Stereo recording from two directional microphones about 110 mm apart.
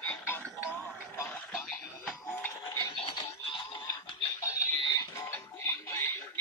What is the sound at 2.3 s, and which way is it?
Music, 20° left (ahead or behind).